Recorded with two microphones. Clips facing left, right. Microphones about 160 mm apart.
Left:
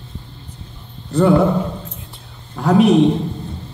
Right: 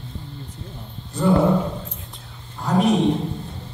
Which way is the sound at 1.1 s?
70° left (ahead or behind).